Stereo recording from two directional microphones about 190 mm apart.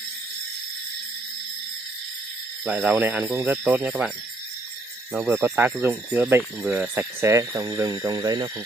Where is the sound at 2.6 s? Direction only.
5° right (ahead or behind).